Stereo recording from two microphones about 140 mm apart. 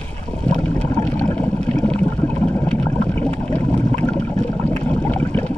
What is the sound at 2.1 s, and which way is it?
Vehicle, 10° left (ahead or behind).